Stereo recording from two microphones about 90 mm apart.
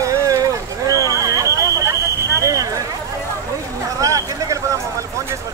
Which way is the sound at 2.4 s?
40° right (ahead or behind).